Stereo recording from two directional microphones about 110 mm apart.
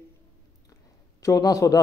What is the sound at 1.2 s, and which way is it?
Speech, 30° left (ahead or behind).